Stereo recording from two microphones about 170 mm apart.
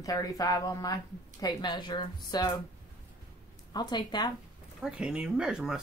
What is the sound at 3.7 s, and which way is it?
Speech, 25° left (ahead or behind).